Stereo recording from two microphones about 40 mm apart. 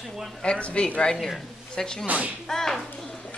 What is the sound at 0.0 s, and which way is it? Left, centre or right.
Speech, centre.